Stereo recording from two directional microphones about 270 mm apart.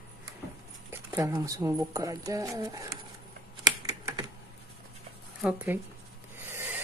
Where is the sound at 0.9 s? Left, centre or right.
Centre.